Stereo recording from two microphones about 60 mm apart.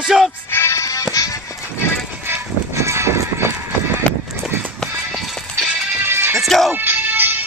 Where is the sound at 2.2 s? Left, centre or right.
Right.